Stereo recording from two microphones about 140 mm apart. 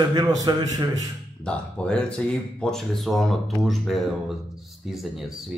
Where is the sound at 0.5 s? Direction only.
30° right (ahead or behind).